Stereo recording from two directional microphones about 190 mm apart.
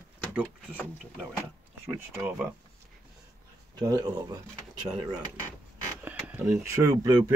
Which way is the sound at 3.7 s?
20° right (ahead or behind).